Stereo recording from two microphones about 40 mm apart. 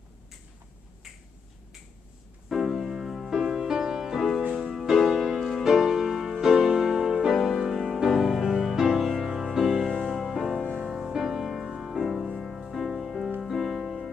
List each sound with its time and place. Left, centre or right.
2.5 s music: centre
4.4 s music: right
4.6 s music: centre
9.8 s music: centre